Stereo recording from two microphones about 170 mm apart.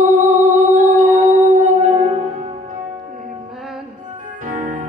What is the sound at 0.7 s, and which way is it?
Music, 50° right (ahead or behind).